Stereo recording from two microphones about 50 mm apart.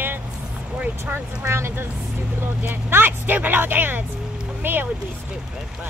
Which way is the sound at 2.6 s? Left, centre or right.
Right.